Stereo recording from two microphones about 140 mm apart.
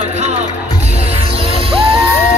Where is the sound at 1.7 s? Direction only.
40° right (ahead or behind).